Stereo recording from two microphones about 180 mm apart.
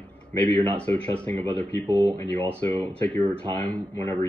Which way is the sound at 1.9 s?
25° right (ahead or behind).